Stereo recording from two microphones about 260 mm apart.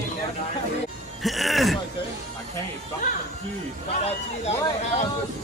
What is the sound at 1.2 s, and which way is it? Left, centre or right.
Speech, centre.